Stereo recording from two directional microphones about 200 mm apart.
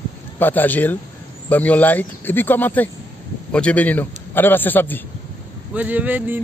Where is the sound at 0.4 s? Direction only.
10° left (ahead or behind).